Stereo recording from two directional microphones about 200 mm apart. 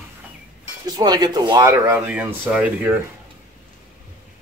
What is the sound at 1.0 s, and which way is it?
Speech, 20° right (ahead or behind).